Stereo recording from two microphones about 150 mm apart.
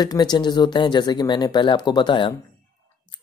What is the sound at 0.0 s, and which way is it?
A woman's voice, 25° left (ahead or behind).